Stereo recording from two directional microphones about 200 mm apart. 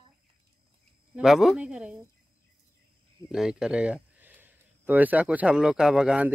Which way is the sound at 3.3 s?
5° right (ahead or behind).